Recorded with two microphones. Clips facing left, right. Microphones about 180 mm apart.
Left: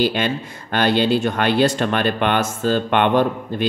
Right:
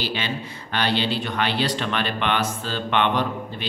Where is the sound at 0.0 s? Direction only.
50° left (ahead or behind).